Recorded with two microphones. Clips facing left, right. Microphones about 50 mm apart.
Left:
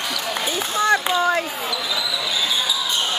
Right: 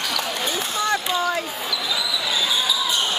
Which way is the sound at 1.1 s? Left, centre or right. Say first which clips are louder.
Left 3 dB; left.